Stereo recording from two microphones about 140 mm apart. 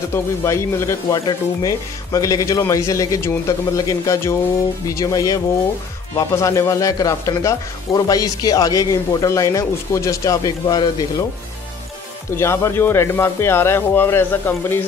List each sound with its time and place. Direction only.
0.1 s speech: 20° left (ahead or behind)
12.4 s speech: 20° left (ahead or behind)